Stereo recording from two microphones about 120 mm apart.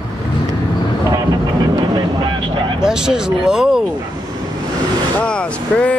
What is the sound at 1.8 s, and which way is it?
Vehicle, 40° right (ahead or behind).